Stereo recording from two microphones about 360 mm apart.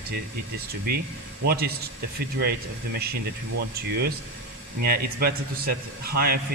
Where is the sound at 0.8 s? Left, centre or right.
Right.